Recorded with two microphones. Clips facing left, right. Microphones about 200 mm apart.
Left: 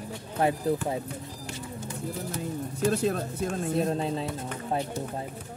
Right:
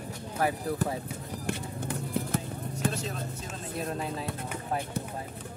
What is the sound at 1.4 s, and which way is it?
Run, 60° right (ahead or behind).